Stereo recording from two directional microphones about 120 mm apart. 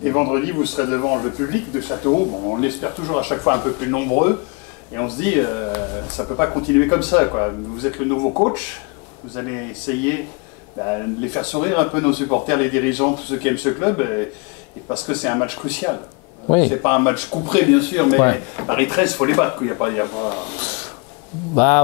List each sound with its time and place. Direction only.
0.0 s speech: 20° left (ahead or behind)
9.4 s speech: 15° left (ahead or behind)